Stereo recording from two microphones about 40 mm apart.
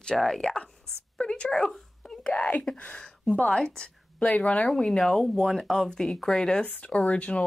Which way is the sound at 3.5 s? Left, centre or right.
Left.